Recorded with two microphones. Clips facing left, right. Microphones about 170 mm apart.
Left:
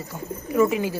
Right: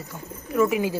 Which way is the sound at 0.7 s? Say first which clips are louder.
Right 1 dB; 15° right (ahead or behind).